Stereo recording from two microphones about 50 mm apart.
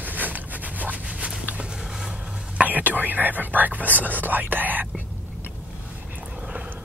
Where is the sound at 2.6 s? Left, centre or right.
Right.